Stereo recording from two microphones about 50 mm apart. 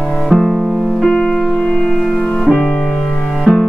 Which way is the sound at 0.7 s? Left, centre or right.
Centre.